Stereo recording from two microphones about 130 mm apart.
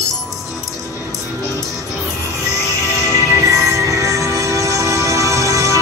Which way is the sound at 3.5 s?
25° right (ahead or behind).